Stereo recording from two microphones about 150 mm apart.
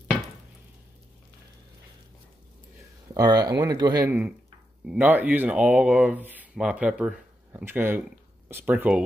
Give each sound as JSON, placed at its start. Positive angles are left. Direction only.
{"t": 3.2, "sound": "speech", "side_deg": -25}
{"t": 4.8, "sound": "speech", "side_deg": -10}